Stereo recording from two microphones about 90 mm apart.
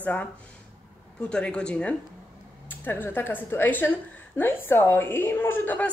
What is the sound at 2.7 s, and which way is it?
A woman's voice, 25° left (ahead or behind).